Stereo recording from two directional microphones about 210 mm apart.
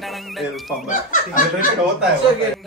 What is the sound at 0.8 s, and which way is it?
Speech, 40° left (ahead or behind).